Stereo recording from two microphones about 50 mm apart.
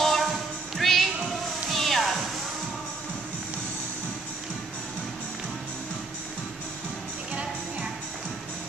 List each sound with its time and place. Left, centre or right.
0.0 s music: centre